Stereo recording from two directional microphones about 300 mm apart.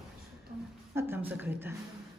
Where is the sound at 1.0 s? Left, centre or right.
Centre.